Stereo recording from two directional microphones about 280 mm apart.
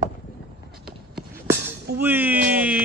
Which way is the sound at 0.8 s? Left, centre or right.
Centre.